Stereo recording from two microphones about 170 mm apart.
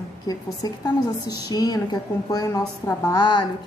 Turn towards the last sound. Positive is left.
turn(degrees=25)  # may be behind; listen again after turning